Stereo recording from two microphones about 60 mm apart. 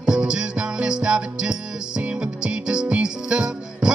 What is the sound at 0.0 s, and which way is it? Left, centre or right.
Music, centre.